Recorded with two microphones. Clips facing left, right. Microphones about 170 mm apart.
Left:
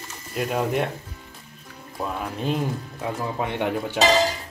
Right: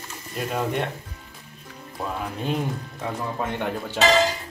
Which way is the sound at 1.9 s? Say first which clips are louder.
Left 1 dB; centre (ahead or behind).